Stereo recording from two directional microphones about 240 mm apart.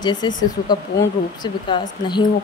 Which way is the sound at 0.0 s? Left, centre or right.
Centre.